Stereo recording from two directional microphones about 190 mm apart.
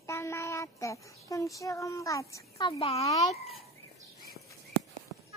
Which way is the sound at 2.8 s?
35° left (ahead or behind).